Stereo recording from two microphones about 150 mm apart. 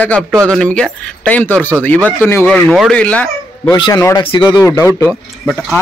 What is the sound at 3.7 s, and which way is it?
Speech, 25° left (ahead or behind).